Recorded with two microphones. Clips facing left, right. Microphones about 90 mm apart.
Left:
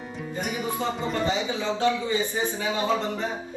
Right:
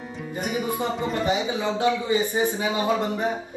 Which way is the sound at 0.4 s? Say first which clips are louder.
Right 3 dB; centre (ahead or behind).